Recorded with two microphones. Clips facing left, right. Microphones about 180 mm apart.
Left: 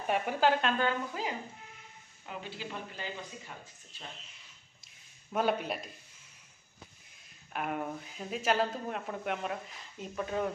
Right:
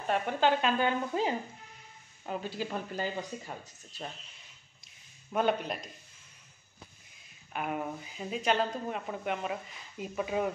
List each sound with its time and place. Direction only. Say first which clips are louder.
0.0 s speech: even; 10° left (ahead or behind)
0.7 s speech: right 3 dB; 20° right (ahead or behind)
2.2 s speech: right 6 dB; 40° right (ahead or behind)
5.3 s speech: right 1 dB; 5° left (ahead or behind)
7.5 s speech: right 1 dB; centre (ahead or behind)